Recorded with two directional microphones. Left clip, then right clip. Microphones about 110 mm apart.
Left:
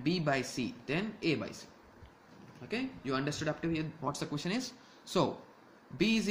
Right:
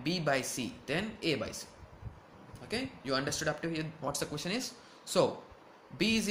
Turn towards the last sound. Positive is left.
turn(degrees=30)  # may be behind; listen again after turning